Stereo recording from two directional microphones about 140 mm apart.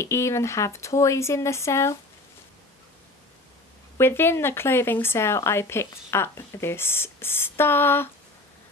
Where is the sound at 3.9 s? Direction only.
15° left (ahead or behind).